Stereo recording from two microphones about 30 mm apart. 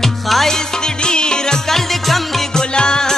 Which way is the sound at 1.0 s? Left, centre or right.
Left.